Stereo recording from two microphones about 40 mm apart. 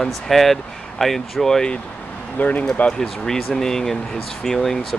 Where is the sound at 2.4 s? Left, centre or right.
Left.